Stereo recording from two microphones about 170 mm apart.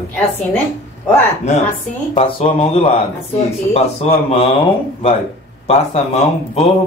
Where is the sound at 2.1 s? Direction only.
35° left (ahead or behind).